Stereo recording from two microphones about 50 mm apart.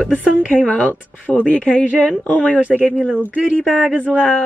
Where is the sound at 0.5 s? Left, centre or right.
Left.